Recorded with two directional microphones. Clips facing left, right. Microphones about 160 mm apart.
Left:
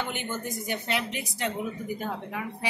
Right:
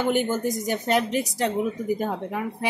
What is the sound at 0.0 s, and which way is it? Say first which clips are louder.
A woman's voice: right 10 dB; 40° right (ahead or behind).